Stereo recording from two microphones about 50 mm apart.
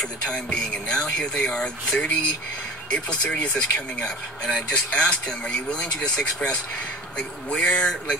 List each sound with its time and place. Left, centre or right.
0.2 s speech: centre